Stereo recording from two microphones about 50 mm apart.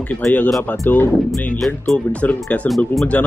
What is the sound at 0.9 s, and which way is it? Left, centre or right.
Speech, left.